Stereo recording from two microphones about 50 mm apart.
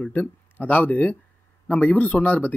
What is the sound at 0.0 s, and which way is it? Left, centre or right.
Speech, left.